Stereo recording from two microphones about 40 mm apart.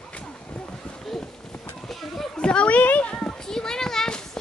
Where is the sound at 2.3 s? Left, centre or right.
Left.